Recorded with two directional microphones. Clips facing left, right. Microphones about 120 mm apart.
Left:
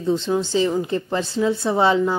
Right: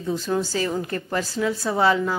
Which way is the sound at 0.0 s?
25° left (ahead or behind).